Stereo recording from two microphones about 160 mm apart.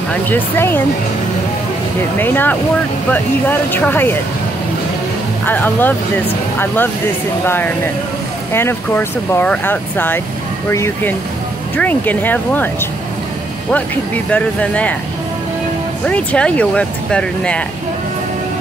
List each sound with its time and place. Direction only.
0.1 s speech: 15° left (ahead or behind)
2.1 s speech: 10° left (ahead or behind)
5.4 s speech: 10° left (ahead or behind)
13.7 s speech: 10° left (ahead or behind)
16.1 s speech: 10° left (ahead or behind)